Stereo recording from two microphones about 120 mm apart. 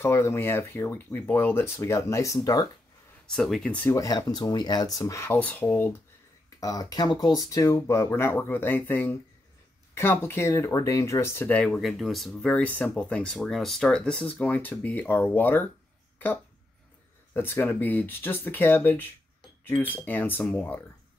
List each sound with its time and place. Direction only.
0.0 s speech: 25° left (ahead or behind)
3.3 s speech: 5° left (ahead or behind)
3.9 s speech: 30° left (ahead or behind)
6.6 s speech: 30° left (ahead or behind); by 15.7 s 15° left (ahead or behind)
17.3 s speech: 15° left (ahead or behind)